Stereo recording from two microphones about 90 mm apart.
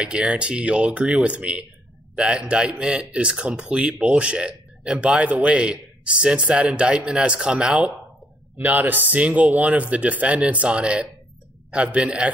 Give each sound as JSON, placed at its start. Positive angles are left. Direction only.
{"t": 0.0, "sound": "a man's voice", "side_deg": -10}